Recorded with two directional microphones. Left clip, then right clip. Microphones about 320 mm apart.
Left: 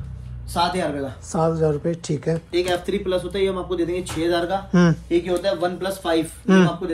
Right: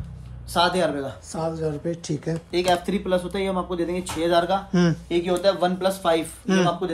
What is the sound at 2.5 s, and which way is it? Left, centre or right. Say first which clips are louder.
Speech: right 2 dB; centre.